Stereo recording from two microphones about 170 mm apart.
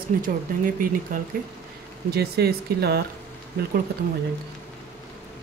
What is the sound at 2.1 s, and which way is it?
Speech, 70° right (ahead or behind).